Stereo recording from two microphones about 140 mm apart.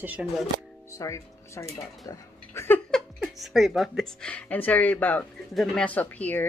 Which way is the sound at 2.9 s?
Centre (ahead or behind).